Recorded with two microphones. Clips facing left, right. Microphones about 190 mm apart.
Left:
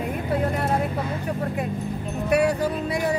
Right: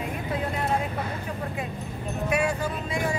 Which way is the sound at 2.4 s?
65° left (ahead or behind).